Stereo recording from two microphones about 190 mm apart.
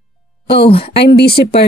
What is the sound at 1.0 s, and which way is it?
Speech, 55° left (ahead or behind).